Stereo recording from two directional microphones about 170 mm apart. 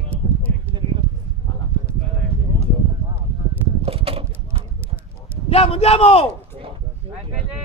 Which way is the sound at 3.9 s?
35° right (ahead or behind).